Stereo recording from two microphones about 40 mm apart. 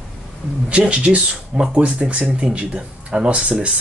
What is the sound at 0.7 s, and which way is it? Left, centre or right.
Speech, right.